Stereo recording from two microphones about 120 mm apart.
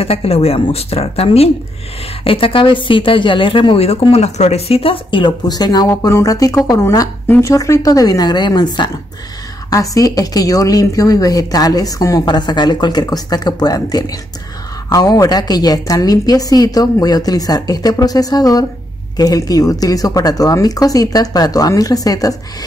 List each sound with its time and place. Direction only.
0.0 s a woman's voice: 55° left (ahead or behind); by 5.9 s 35° left (ahead or behind)
5.9 s speech: 25° left (ahead or behind)
7.2 s speech: 15° left (ahead or behind)
7.5 s speech: 30° left (ahead or behind)